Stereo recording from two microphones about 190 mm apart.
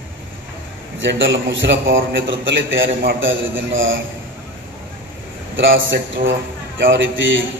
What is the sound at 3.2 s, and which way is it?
Speech, 90° right.